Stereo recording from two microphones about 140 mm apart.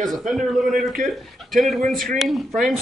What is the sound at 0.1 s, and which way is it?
A man's voice, centre (ahead or behind).